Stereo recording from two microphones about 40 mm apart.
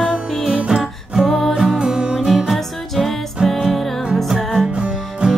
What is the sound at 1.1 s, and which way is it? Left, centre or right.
Music, centre.